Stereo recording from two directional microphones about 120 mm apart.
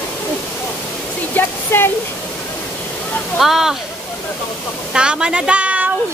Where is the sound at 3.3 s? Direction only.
Centre (ahead or behind).